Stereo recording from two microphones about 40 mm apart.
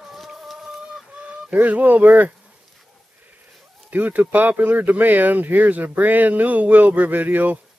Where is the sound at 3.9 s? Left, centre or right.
Right.